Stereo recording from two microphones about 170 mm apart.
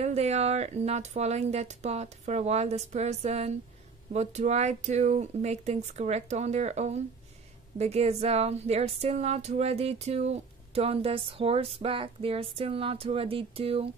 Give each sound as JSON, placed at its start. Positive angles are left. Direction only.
{"t": 0.0, "sound": "speech", "side_deg": -40}